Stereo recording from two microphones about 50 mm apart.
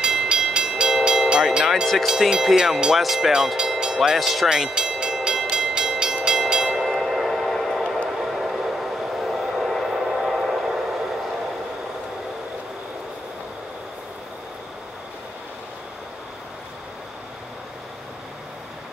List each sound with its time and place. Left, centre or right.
0.0 s train: centre
2.0 s speech: centre
4.5 s train: centre